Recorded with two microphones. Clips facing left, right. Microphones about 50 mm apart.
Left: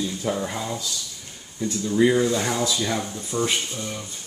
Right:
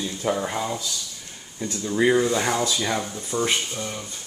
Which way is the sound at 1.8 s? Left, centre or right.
Centre.